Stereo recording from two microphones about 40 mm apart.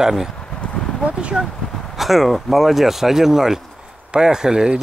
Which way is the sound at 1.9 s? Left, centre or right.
Centre.